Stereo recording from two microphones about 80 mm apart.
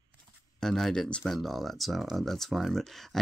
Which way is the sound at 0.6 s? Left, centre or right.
Centre.